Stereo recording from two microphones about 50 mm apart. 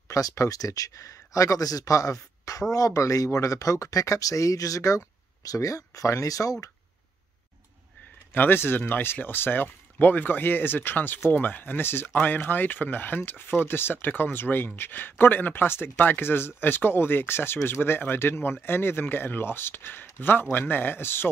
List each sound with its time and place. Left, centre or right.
0.1 s speech: left
8.3 s speech: left